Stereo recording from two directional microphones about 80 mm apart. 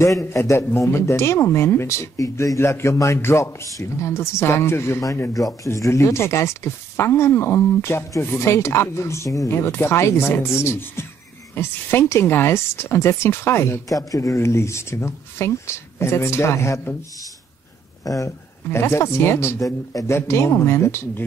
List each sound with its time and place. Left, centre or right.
0.2 s speech: left
13.9 s speech: left
18.0 s speech: left
18.7 s speech: left